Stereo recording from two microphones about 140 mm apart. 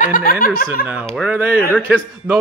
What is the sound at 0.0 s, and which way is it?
Chuckle, 85° left.